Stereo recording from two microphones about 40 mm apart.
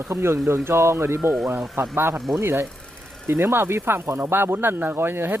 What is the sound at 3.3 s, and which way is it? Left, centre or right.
Speech, right.